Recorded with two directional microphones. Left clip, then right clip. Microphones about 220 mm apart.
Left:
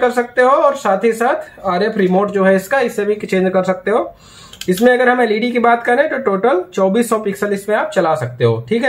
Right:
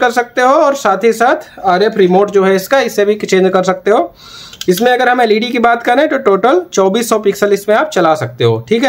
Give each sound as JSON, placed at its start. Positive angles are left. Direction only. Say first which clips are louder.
{"t": 0.0, "sound": "speech", "louder": "right 2 dB", "side_deg": -50}